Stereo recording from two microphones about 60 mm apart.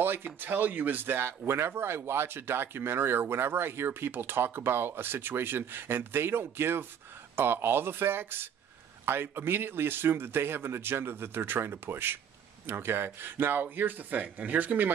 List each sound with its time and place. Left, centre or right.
0.0 s speech: right